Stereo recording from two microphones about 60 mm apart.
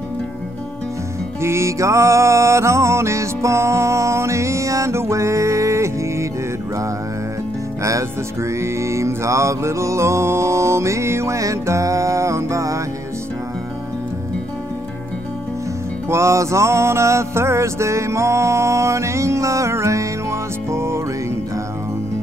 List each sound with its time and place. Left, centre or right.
1.4 s music: right
7.8 s music: right
16.1 s music: right